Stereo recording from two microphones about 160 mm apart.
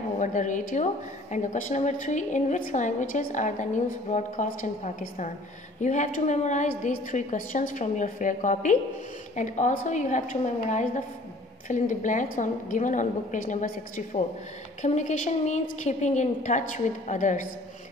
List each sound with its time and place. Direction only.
0.2 s a woman's voice: 50° left (ahead or behind)